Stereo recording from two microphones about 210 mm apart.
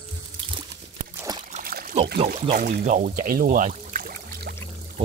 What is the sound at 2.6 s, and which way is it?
Speech, 45° right (ahead or behind).